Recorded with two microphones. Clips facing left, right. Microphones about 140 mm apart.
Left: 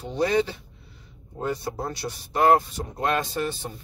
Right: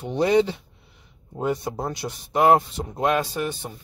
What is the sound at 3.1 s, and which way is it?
Speech, 10° right (ahead or behind).